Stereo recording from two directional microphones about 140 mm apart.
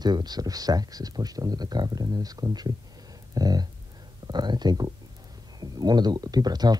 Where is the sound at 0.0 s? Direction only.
30° right (ahead or behind).